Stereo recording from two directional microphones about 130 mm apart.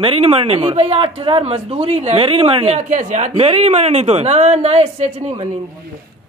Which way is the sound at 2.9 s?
75° right (ahead or behind).